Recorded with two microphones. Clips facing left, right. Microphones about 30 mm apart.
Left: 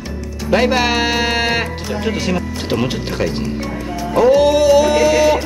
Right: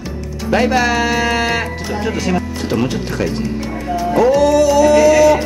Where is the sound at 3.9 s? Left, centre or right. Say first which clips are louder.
Right 3 dB; centre.